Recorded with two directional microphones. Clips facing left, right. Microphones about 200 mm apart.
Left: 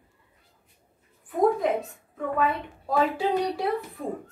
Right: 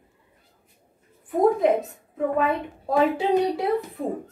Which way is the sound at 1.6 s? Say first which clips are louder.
Right 5 dB; 20° right (ahead or behind).